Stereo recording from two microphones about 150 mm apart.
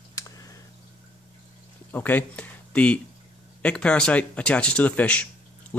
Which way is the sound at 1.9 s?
10° left (ahead or behind).